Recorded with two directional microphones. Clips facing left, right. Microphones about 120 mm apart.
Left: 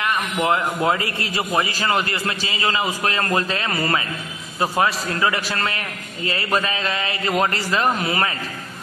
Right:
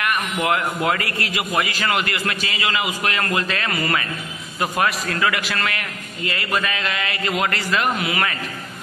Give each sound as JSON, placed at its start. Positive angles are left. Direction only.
{"t": 0.0, "sound": "a man's voice", "side_deg": 25}